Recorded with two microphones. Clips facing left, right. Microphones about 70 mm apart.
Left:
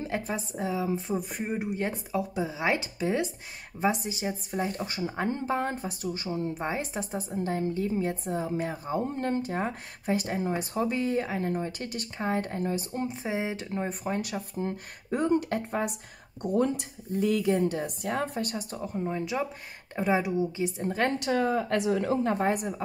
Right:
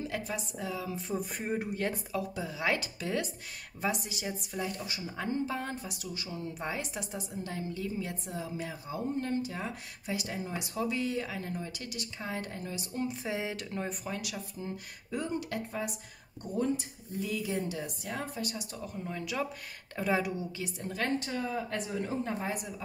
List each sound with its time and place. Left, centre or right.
0.0 s a woman's voice: left
16.4 s speech: left
21.2 s a woman's voice: left